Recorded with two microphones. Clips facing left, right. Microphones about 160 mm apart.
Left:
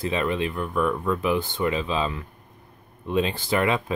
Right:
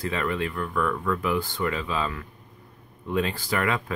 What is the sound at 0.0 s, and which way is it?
Speech, 20° left (ahead or behind).